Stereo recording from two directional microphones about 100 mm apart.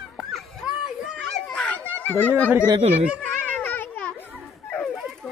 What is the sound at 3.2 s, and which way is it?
Children playing, 15° left (ahead or behind).